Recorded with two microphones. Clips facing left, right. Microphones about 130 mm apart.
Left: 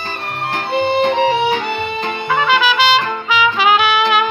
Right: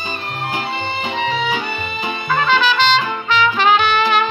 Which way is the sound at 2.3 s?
5° left (ahead or behind).